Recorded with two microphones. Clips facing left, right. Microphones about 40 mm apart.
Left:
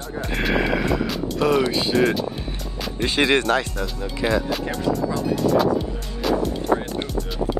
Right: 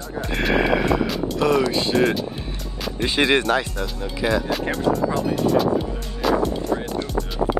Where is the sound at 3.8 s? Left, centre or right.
Centre.